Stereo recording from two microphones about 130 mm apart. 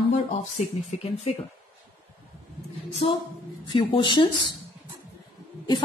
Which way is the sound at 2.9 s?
45° left (ahead or behind).